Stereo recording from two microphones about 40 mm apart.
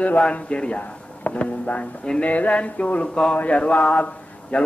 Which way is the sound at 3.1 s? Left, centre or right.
Centre.